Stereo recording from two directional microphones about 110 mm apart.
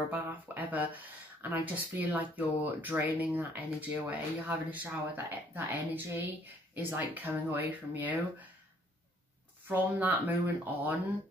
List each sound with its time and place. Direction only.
0.1 s speech: 15° right (ahead or behind)
9.7 s speech: 15° right (ahead or behind)